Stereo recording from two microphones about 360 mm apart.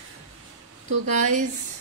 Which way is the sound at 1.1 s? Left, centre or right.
Right.